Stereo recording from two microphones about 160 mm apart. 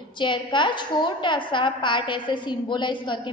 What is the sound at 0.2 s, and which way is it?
A woman's voice, 30° left (ahead or behind).